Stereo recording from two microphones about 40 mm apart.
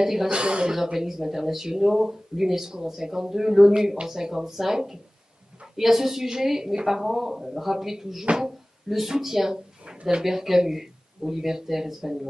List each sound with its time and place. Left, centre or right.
0.0 s speech: centre
0.3 s speech: right
0.9 s speech: centre
8.3 s speech: right
8.8 s speech: centre